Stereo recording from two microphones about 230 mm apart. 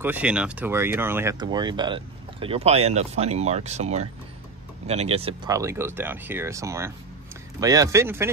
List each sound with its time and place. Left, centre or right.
0.0 s speech: centre; by 5.5 s right
5.5 s speech: centre